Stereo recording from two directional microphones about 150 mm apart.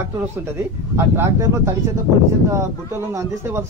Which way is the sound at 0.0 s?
15° right (ahead or behind).